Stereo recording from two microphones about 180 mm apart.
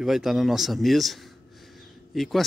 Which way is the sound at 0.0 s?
Centre (ahead or behind).